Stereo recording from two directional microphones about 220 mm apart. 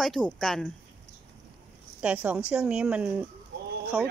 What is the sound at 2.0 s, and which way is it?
Speech, 5° right (ahead or behind).